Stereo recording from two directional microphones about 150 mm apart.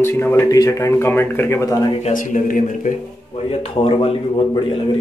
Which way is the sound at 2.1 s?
60° left (ahead or behind).